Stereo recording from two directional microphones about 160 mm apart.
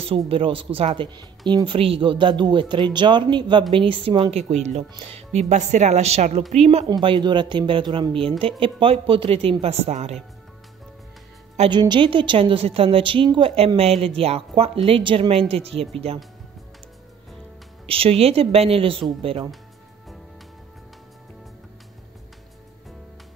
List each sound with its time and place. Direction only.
0.3 s a woman's voice: 35° right (ahead or behind)
6.9 s a woman's voice: 30° right (ahead or behind)
11.7 s a woman's voice: 30° right (ahead or behind)
17.8 s a woman's voice: 35° right (ahead or behind)